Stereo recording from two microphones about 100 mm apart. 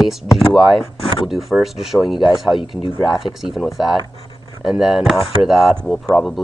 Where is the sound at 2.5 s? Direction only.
60° left (ahead or behind).